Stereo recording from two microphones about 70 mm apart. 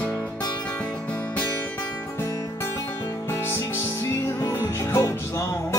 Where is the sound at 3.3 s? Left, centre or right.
Left.